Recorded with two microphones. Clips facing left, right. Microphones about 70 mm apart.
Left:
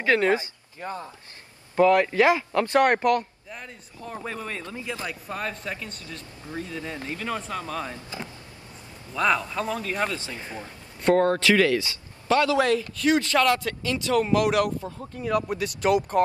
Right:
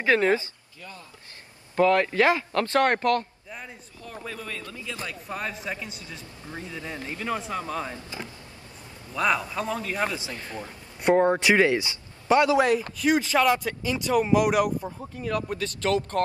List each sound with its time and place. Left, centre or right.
0.0 s speech: right
0.7 s speech: left
1.8 s a man's voice: centre
3.4 s speech: centre
4.6 s speech: left
5.3 s a man's voice: centre
6.5 s speech: right
9.1 s speech: centre
10.0 s a man's voice: centre
10.3 s a man's voice: centre
10.6 s speech: centre
12.9 s speech: centre
15.2 s a man's voice: centre